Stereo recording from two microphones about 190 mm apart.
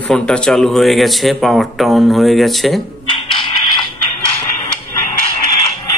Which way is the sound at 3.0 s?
25° left (ahead or behind).